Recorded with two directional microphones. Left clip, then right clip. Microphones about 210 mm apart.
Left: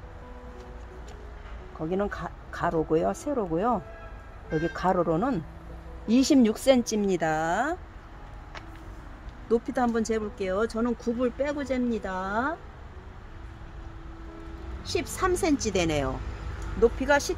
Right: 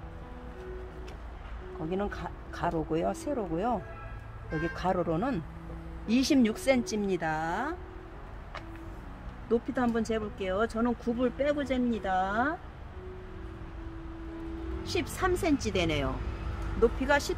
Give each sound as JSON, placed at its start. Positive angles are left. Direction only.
{"t": 1.9, "sound": "speech", "side_deg": 40}
{"t": 9.5, "sound": "speech", "side_deg": 45}
{"t": 14.8, "sound": "a woman's voice", "side_deg": 40}
{"t": 16.8, "sound": "speech", "side_deg": 35}